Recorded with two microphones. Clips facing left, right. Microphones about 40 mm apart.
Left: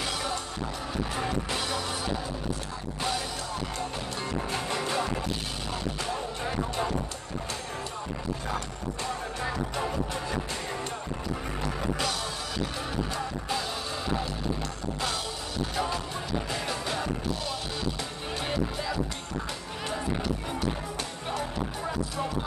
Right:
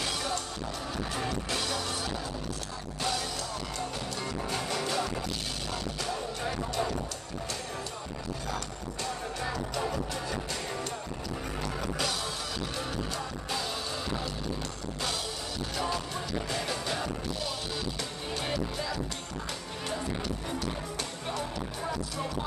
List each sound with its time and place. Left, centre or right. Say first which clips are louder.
0.0 s music: left 1 dB; centre
4.5 s music: even; left
8.5 s music: left 3 dB; left
13.1 s music: left 3 dB; centre
15.7 s music: even; centre
18.4 s music: left 3 dB; centre